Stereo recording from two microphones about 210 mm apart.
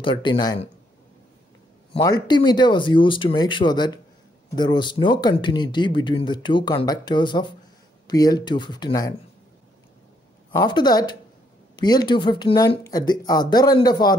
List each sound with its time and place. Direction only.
0.0 s speech: 25° left (ahead or behind)
2.0 s speech: 20° left (ahead or behind)
10.5 s speech: 20° left (ahead or behind)